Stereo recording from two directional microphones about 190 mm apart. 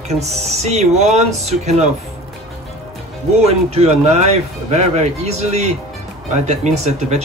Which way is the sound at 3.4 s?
35° right (ahead or behind).